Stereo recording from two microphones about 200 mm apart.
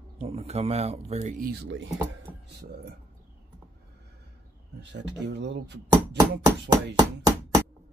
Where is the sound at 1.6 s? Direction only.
65° right (ahead or behind).